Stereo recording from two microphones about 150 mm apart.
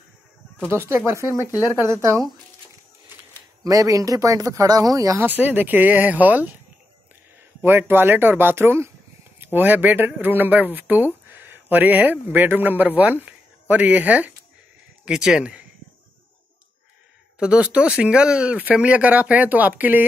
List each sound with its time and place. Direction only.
0.7 s speech: 15° right (ahead or behind)
3.6 s speech: 20° right (ahead or behind)
7.6 s speech: 15° right (ahead or behind)
17.4 s speech: 5° right (ahead or behind)